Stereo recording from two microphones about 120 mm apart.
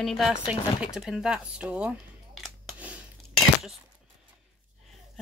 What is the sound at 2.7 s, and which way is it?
Scissors, 10° right (ahead or behind).